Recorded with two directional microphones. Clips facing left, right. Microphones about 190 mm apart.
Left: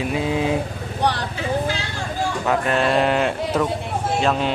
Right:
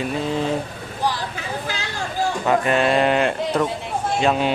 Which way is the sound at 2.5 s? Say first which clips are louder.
Right 1 dB; centre (ahead or behind).